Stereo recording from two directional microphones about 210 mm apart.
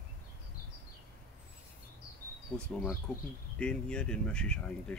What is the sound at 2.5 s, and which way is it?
Speech, 5° left (ahead or behind).